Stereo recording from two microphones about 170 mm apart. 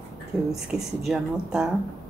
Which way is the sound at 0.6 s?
5° right (ahead or behind).